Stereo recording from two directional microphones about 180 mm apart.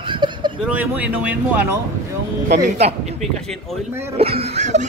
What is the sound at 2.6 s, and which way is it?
Speech, 35° right (ahead or behind).